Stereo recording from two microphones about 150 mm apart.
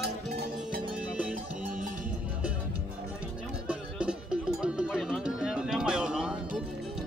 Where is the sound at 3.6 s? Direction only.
5° right (ahead or behind).